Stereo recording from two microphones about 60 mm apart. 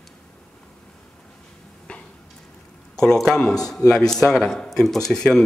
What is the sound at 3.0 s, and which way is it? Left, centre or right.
Speech, centre.